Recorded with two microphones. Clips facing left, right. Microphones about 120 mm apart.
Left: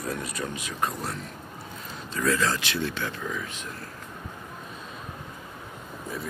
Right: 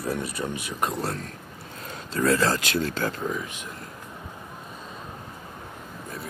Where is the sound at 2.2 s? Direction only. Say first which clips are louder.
Right 3 dB; 35° right (ahead or behind).